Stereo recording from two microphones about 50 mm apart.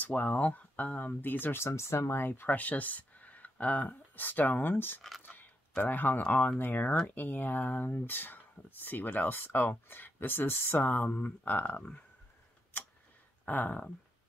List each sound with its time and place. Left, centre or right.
0.0 s speech: left
1.6 s speech: left
2.1 s speech: left
5.2 s a sound: left
5.8 s speech: left
13.5 s speech: left